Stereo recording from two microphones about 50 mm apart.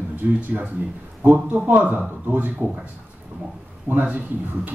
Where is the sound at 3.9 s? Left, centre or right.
Right.